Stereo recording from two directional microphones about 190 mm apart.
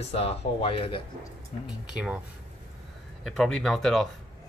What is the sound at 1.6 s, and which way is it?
Speech, 5° right (ahead or behind).